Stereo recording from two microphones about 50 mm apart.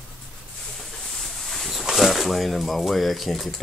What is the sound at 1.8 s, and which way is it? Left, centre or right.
Speech, centre.